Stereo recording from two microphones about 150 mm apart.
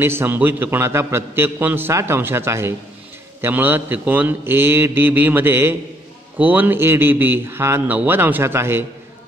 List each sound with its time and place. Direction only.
0.0 s a man's voice: 15° right (ahead or behind)